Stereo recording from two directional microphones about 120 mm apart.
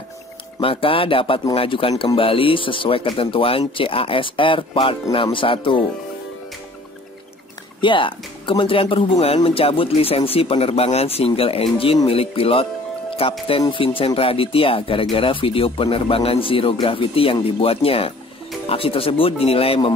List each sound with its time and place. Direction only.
0.6 s a man's voice: 50° left (ahead or behind)
7.8 s a man's voice: 45° left (ahead or behind)